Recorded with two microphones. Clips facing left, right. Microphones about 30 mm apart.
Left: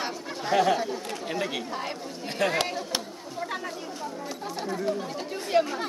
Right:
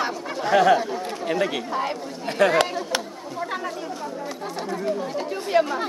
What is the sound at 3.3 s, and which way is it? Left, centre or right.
Chatter, centre.